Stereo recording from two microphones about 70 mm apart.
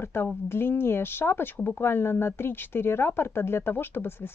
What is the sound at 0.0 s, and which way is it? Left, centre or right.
Speech, left.